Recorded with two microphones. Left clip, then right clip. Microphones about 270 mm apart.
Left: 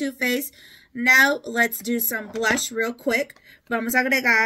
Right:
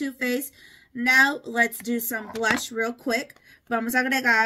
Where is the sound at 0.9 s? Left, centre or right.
Centre.